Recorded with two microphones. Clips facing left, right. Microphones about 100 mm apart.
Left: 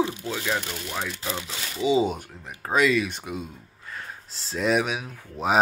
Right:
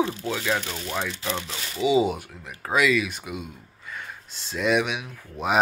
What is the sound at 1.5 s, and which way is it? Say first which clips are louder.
Speech: right 1 dB; 15° right (ahead or behind).